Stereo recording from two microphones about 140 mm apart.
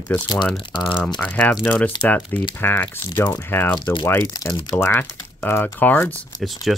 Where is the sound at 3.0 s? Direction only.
30° left (ahead or behind).